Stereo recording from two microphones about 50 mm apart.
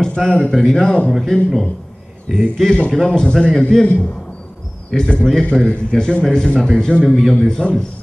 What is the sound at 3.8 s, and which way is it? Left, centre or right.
Speech, left.